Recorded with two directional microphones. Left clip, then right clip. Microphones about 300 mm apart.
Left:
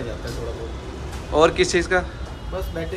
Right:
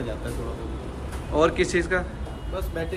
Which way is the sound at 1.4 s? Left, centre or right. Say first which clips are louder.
Left 4 dB; centre.